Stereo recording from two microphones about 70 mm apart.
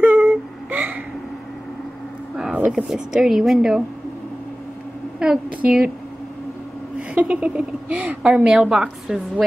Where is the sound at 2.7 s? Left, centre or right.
Centre.